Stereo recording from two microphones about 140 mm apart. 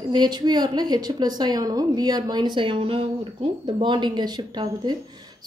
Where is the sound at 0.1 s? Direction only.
30° right (ahead or behind).